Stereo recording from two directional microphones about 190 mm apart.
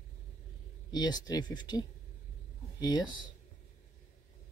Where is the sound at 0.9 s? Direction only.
20° left (ahead or behind).